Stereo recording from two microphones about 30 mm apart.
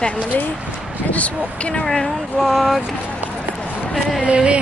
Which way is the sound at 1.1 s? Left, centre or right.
Left.